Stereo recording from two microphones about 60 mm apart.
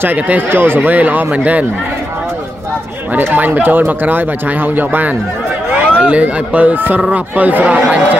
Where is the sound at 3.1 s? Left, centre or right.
Right.